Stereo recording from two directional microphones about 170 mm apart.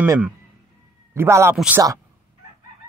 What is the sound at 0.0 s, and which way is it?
Speech, 10° right (ahead or behind).